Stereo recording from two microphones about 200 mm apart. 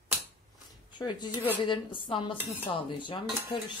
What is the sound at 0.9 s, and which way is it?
A woman's voice, 20° left (ahead or behind).